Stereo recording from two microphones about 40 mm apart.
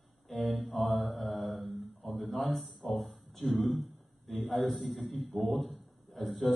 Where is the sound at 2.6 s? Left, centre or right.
Right.